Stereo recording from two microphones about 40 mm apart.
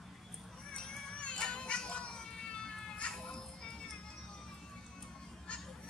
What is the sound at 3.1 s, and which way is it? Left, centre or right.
Music, centre.